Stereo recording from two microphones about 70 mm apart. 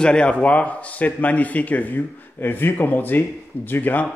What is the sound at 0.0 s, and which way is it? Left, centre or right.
A man's voice, centre.